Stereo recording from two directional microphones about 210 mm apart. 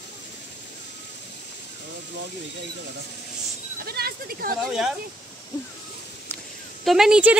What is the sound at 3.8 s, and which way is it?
Speech, 45° right (ahead or behind).